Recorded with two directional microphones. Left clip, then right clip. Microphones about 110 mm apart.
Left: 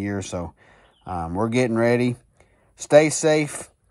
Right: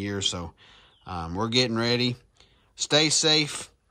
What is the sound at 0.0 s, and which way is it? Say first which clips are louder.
Speech: even; 15° right (ahead or behind).